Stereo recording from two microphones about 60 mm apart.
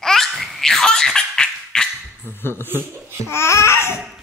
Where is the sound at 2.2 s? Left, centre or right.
Left.